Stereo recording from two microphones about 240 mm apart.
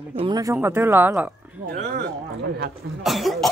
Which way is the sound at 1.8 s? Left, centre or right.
Right.